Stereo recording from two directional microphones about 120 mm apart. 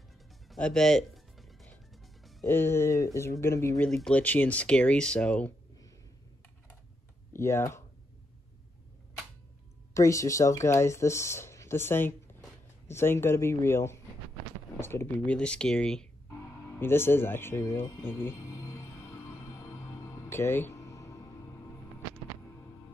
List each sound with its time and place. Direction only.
0.5 s music: 5° left (ahead or behind)
2.4 s speech: 20° left (ahead or behind)
3.9 s speech: 10° left (ahead or behind)
7.3 s speech: 25° left (ahead or behind)
9.9 s speech: 25° left (ahead or behind)
15.3 s speech: 10° left (ahead or behind)
16.7 s music: 20° left (ahead or behind)